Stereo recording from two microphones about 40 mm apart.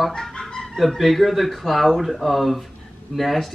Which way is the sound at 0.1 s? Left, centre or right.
Centre.